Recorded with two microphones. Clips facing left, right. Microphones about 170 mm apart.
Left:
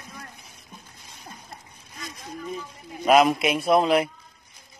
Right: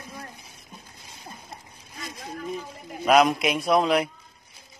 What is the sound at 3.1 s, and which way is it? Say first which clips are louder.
A man's voice: left 1 dB; centre (ahead or behind).